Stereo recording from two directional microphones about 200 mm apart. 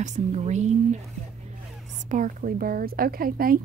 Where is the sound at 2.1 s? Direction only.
40° right (ahead or behind).